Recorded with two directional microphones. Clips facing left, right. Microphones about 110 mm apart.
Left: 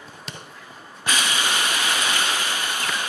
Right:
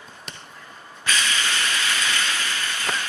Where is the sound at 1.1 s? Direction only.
15° left (ahead or behind).